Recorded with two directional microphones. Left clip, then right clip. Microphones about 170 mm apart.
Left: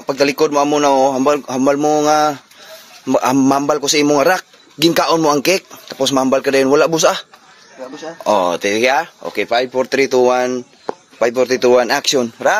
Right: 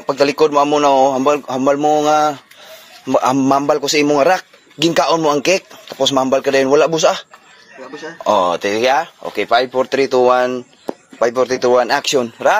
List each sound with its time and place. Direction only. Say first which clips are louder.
0.0 s a man's voice: right 1 dB; 15° left (ahead or behind)